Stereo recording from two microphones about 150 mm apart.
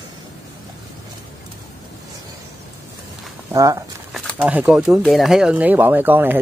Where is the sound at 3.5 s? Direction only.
20° right (ahead or behind).